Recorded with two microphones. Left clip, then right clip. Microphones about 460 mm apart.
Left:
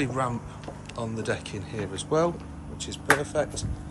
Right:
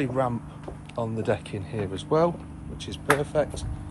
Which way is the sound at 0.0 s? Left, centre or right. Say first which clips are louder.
Right 2 dB; centre.